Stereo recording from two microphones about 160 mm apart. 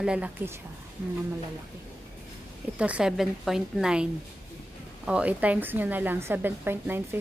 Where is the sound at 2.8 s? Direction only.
5° right (ahead or behind).